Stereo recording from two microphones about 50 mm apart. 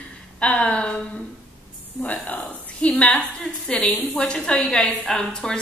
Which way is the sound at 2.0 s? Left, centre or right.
Left.